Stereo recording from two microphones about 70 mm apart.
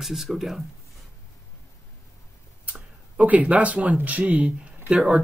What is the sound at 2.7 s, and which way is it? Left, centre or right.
Speech, right.